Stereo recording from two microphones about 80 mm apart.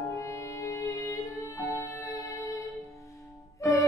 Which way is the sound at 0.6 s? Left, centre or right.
Left.